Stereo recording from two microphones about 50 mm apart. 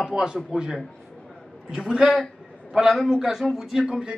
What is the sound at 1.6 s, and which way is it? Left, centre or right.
Speech, centre.